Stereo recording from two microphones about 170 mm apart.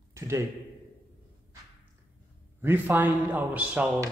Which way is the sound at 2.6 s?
10° right (ahead or behind).